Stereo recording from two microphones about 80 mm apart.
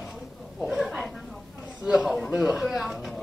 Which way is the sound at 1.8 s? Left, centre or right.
Centre.